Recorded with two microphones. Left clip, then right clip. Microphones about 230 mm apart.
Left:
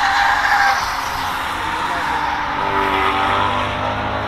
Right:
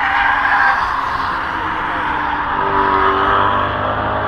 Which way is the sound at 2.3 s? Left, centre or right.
Left.